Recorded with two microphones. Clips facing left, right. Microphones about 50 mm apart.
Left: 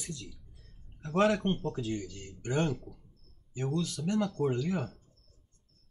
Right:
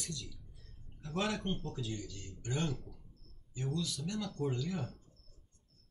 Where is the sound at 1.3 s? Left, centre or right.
Left.